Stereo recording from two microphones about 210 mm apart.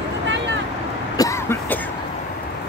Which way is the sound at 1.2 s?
15° left (ahead or behind).